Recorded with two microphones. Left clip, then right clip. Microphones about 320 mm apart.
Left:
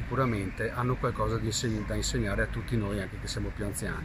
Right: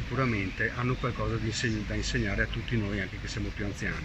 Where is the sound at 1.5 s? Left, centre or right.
Left.